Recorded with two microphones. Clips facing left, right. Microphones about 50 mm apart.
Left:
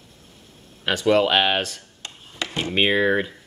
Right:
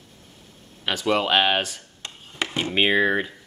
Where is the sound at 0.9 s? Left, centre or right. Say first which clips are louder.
Left 3 dB; centre.